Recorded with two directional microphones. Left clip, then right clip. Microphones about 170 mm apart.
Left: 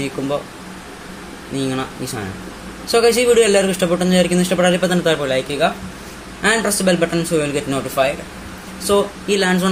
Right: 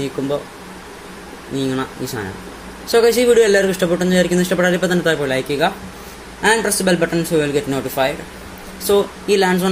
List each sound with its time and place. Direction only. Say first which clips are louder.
1.6 s a man's voice: right 1 dB; 15° right (ahead or behind); by 5.7 s 30° right (ahead or behind)
6.4 s a man's voice: right 1 dB; 15° right (ahead or behind)